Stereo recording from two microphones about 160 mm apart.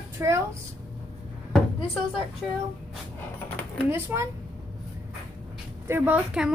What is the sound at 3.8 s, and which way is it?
Speech, 15° right (ahead or behind).